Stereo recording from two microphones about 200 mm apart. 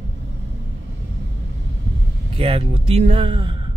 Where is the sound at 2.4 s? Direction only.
30° right (ahead or behind).